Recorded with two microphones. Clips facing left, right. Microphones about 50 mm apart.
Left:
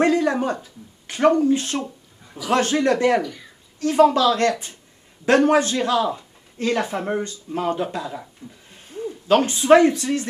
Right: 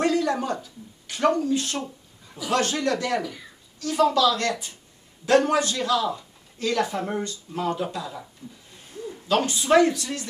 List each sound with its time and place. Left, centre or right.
0.0 s a man's voice: left
3.2 s speech: centre
3.8 s a man's voice: left